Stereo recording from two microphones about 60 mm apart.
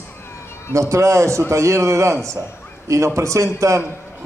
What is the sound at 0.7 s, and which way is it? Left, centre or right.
Speech, right.